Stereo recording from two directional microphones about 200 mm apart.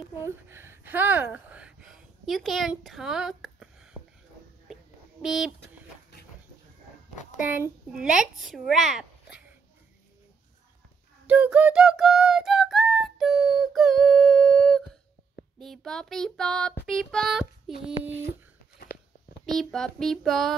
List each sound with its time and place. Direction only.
0.2 s speech: 10° right (ahead or behind)
5.2 s a woman's voice: centre (ahead or behind)
7.3 s a woman's voice: 10° right (ahead or behind)
11.2 s a sound: 5° right (ahead or behind)
15.6 s a woman's voice: centre (ahead or behind)
18.9 s a sound: 55° left (ahead or behind)
19.4 s a woman's voice: centre (ahead or behind)